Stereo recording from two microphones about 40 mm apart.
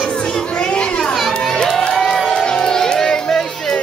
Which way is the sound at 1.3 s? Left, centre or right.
Centre.